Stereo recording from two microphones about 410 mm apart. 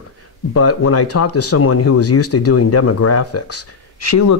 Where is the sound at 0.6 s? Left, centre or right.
Left.